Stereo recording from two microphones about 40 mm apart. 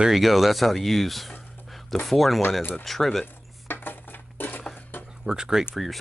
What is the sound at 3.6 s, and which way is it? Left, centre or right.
Dishes, left.